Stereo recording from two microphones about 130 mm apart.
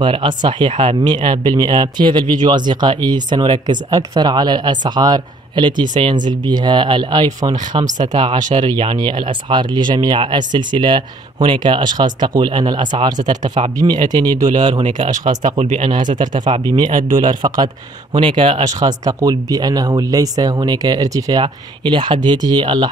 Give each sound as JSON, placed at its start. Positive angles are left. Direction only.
{"t": 0.0, "sound": "speech", "side_deg": -40}
{"t": 14.9, "sound": "speech", "side_deg": -75}
{"t": 15.8, "sound": "speech", "side_deg": -35}
{"t": 18.7, "sound": "speech", "side_deg": -30}